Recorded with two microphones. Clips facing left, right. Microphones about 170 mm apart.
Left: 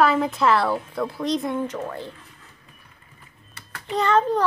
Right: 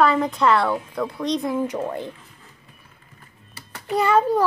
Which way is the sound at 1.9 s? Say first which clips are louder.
Right 4 dB; 15° right (ahead or behind).